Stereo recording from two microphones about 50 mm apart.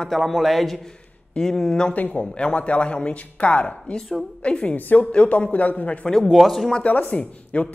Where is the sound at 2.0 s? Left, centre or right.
Left.